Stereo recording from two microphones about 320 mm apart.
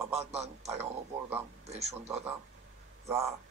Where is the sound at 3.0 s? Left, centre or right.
Centre.